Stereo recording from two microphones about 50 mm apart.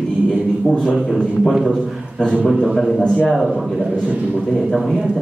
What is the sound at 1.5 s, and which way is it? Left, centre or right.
Speech, centre.